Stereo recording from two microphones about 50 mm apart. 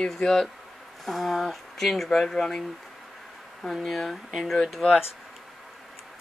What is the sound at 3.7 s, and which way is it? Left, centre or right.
Speech, centre.